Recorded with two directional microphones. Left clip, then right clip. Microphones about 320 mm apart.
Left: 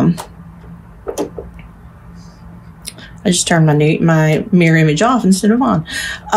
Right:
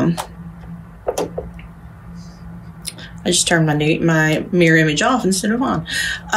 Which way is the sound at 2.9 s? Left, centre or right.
Left.